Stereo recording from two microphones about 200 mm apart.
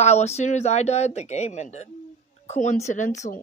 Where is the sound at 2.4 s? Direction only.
35° left (ahead or behind).